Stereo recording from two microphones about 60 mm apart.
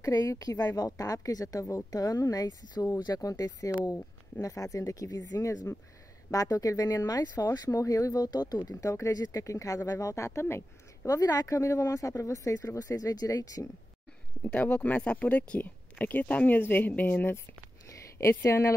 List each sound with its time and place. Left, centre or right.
0.0 s speech: left
1.9 s speech: left
3.9 s speech: left
6.3 s speech: left
11.1 s speech: left
14.4 s speech: left
18.4 s speech: left